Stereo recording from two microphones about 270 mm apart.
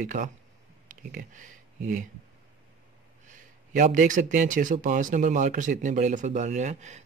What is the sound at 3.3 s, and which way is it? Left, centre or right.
Speech, right.